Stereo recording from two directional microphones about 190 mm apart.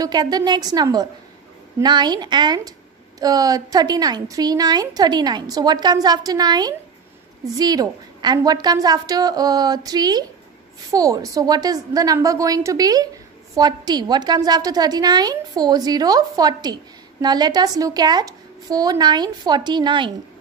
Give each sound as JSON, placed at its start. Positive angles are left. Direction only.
{"t": 0.0, "sound": "a woman's voice", "side_deg": -20}